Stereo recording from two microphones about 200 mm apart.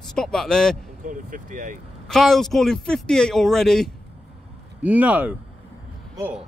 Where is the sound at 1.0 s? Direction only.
40° right (ahead or behind).